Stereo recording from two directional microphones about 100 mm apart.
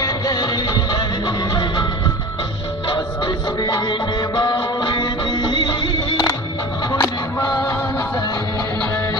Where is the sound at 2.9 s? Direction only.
45° left (ahead or behind).